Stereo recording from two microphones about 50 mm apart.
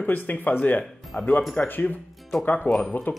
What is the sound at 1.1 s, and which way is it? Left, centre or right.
Speech, left.